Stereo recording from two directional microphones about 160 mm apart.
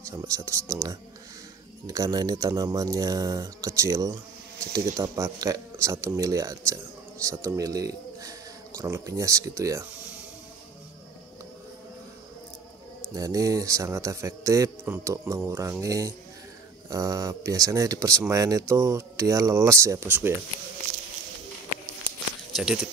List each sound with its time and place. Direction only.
0.0 s a man's voice: 20° right (ahead or behind)
13.1 s a man's voice: 20° right (ahead or behind)
20.9 s a sound: 50° right (ahead or behind)
22.5 s speech: 5° right (ahead or behind)